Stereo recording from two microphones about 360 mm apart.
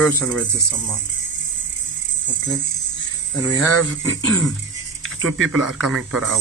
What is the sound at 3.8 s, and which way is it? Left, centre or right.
Speech, right.